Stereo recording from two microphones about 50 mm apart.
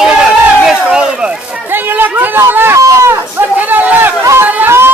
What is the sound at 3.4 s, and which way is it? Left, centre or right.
Chatter, right.